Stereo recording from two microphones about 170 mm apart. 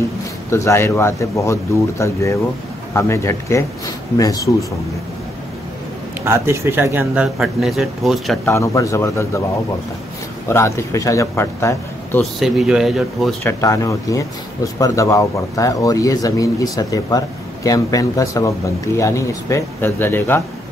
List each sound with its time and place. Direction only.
0.5 s speech: 15° left (ahead or behind)
6.2 s speech: 15° right (ahead or behind)
8.5 s speech: 20° left (ahead or behind)
10.5 s speech: 15° left (ahead or behind)
12.2 s speech: centre (ahead or behind)
13.4 s speech: 15° left (ahead or behind)